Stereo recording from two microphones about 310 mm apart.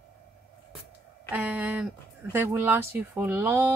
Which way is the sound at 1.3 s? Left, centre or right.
Centre.